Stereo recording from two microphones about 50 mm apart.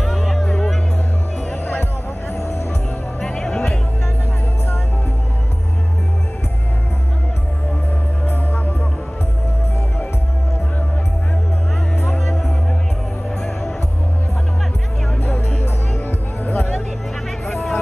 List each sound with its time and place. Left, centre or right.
0.0 s music: centre
3.3 s music: centre
8.3 s music: left
12.0 s music: centre
16.1 s music: left
17.5 s music: centre